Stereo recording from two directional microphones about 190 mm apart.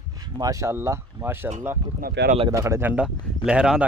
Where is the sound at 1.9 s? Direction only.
50° right (ahead or behind).